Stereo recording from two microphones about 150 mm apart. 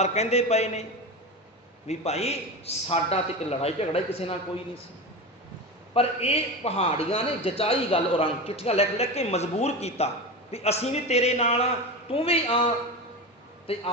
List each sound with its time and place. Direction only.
0.0 s a man's voice: 45° left (ahead or behind)
1.9 s a man's voice: 45° left (ahead or behind)
5.9 s a man's voice: 45° left (ahead or behind)
13.7 s speech: 40° left (ahead or behind)